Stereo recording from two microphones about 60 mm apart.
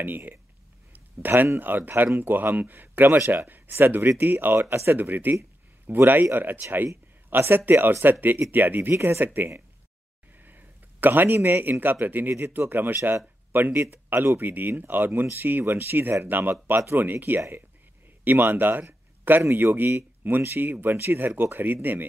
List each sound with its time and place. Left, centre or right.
0.0 s speech: right
0.9 s a sound: right
1.6 s speech: right
4.9 s speech: right
8.9 s speech: right
9.2 s speech: right
10.4 s a sound: right
11.8 s speech: right